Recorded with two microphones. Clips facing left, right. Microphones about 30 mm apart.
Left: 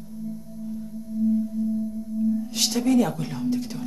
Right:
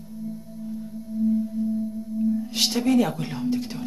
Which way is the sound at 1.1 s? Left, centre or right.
Right.